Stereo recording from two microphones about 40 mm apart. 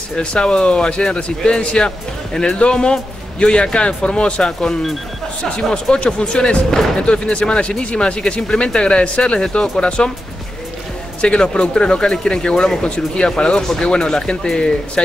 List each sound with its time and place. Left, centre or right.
0.1 s speech: left
11.1 s speech: left